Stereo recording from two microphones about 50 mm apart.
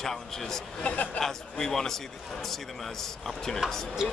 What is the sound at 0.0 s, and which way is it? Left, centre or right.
Speech, centre.